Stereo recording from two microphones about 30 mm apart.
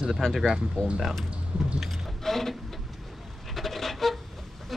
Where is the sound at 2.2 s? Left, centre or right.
Centre.